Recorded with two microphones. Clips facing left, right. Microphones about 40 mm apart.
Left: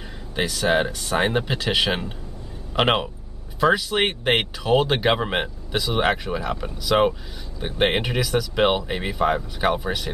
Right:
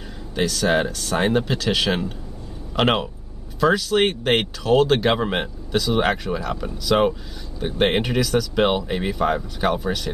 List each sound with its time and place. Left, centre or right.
0.3 s speech: centre